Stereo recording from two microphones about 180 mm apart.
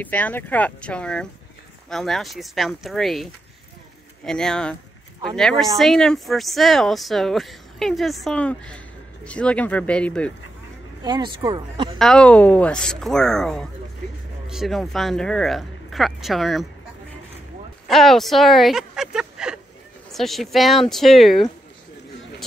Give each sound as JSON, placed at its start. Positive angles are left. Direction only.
{"t": 0.0, "sound": "speech", "side_deg": 10}
{"t": 11.0, "sound": "speech", "side_deg": -25}
{"t": 12.0, "sound": "speech", "side_deg": 5}
{"t": 17.8, "sound": "speech", "side_deg": 0}